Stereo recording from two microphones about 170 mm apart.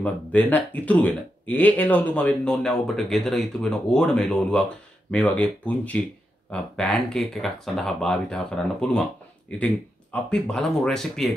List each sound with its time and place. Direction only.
0.0 s speech: 10° left (ahead or behind)